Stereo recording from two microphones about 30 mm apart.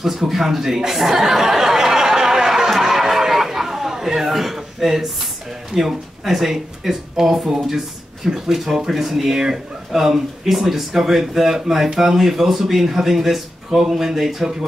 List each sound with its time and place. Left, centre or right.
0.0 s a sound: centre
5.7 s speech: centre
9.3 s speech: centre